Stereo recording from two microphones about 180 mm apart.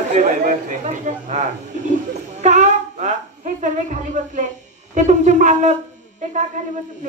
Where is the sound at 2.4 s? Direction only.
40° right (ahead or behind).